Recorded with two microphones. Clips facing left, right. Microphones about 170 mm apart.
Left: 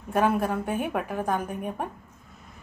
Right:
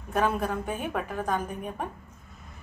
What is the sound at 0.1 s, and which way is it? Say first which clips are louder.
A woman's voice: left 3 dB; 15° left (ahead or behind).